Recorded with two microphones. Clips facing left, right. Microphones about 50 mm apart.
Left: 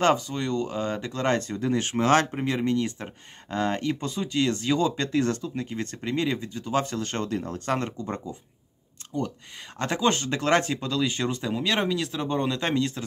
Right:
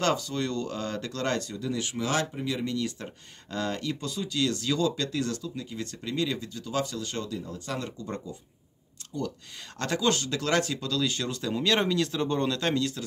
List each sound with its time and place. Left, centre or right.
0.0 s speech: left
9.1 s speech: left